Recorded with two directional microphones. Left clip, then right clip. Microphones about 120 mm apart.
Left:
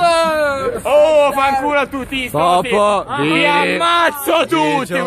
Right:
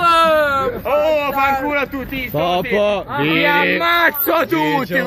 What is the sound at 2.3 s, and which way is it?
Speech, 40° left (ahead or behind).